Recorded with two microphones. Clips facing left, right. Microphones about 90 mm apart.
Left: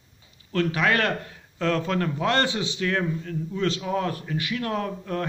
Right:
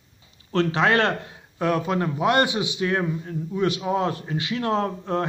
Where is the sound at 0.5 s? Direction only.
30° right (ahead or behind).